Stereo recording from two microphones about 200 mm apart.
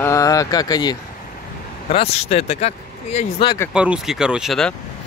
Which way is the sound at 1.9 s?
30° left (ahead or behind).